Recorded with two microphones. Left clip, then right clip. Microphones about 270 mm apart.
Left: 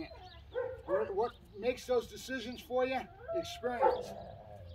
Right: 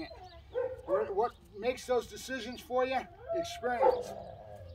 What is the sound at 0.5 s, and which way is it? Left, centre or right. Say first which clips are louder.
Bow-wow: right 3 dB; right.